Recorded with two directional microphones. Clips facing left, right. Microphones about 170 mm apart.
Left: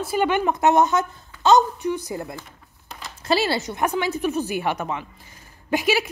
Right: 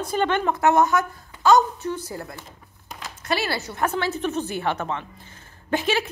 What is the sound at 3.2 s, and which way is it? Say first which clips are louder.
A woman's voice: left 4 dB; 30° left (ahead or behind).